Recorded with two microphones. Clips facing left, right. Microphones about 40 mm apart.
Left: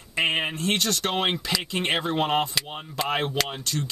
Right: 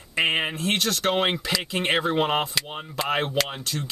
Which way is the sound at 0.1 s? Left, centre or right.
Centre.